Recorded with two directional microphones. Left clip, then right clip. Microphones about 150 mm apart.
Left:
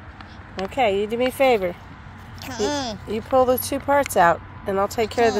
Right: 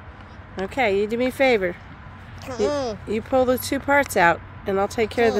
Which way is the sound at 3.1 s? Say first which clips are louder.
Left 3 dB; 30° right (ahead or behind).